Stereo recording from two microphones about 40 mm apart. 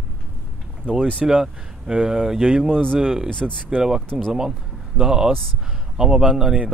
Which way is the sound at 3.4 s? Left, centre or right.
Centre.